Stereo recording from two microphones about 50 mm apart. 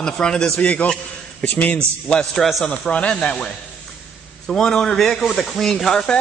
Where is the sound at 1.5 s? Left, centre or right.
Left.